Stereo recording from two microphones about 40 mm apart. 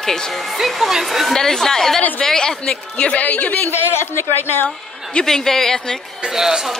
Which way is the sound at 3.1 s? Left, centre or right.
Left.